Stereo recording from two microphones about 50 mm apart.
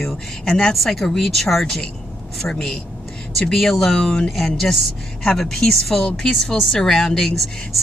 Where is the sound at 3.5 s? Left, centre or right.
Centre.